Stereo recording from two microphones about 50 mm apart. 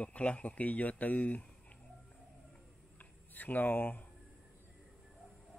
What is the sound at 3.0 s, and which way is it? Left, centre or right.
Speech, left.